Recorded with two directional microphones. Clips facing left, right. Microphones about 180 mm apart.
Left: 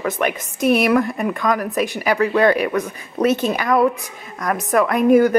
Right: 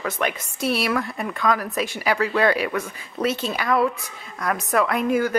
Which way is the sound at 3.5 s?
45° left (ahead or behind).